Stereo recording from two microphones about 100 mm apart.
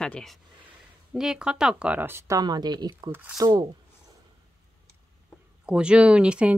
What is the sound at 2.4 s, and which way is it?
Speech, 45° right (ahead or behind).